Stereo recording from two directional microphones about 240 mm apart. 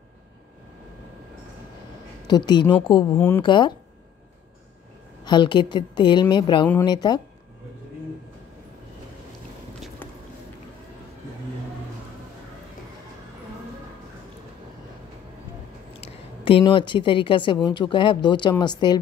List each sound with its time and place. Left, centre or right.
2.2 s a woman's voice: centre
3.2 s speech: centre
3.4 s a woman's voice: centre
5.2 s a woman's voice: centre
10.0 s a sound: centre
16.0 s a woman's voice: left